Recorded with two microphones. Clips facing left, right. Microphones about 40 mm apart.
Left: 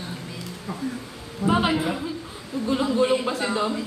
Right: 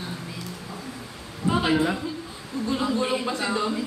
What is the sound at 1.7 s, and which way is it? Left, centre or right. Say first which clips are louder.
A woman's voice: right 1 dB; centre.